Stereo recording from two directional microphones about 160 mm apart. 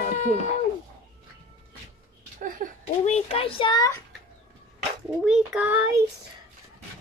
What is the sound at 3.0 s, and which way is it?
A child's voice, 40° left (ahead or behind).